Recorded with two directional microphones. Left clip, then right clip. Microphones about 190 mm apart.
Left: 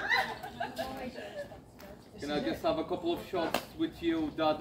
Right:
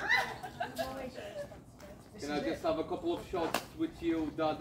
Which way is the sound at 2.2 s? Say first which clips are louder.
Left 2 dB; 45° left (ahead or behind).